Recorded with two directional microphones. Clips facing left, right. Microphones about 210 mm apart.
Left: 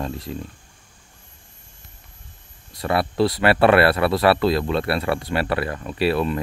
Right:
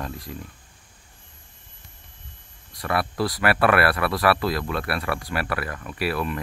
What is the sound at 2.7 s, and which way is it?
Speech, 25° left (ahead or behind).